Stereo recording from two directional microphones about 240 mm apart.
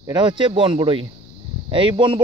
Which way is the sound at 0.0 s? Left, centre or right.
Centre.